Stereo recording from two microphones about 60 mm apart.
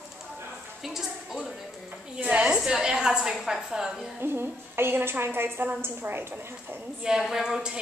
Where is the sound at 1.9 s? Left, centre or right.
Right.